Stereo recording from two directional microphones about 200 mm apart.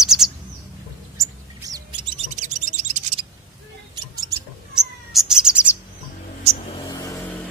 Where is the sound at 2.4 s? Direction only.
35° right (ahead or behind).